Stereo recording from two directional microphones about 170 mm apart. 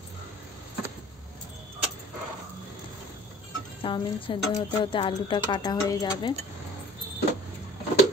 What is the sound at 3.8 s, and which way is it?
Speech, 30° left (ahead or behind).